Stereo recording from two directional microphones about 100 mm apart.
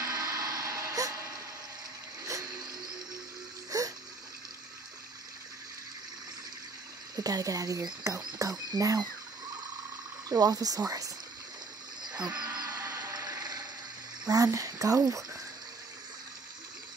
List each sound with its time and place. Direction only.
0.0 s a sound: 40° right (ahead or behind)
3.7 s water: 35° right (ahead or behind)
7.2 s speech: 40° right (ahead or behind)
10.3 s speech: 40° right (ahead or behind)
12.5 s a sound: 40° right (ahead or behind)
14.2 s speech: 35° right (ahead or behind)